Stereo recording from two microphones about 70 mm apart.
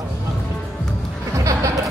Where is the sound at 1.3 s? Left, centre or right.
Right.